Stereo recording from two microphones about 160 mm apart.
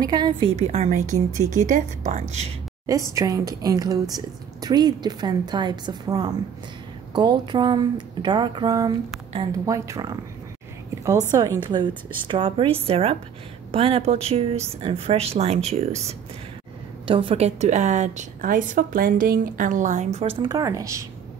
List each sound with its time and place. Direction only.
0.0 s a woman's voice: 25° right (ahead or behind)
0.6 s a woman's voice: 45° right (ahead or behind)
0.8 s a woman's voice: 55° right (ahead or behind)
2.9 s a woman's voice: 20° right (ahead or behind)
11.3 s a woman's voice: 20° right (ahead or behind); by 20.1 s 50° right (ahead or behind)
20.2 s a woman's voice: 35° right (ahead or behind)
20.4 s a woman's voice: 20° right (ahead or behind)